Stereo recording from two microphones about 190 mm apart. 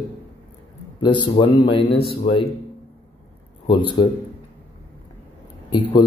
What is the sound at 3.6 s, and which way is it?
Speech, 25° left (ahead or behind).